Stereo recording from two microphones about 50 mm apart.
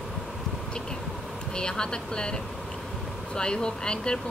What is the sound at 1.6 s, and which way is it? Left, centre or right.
Speech, centre.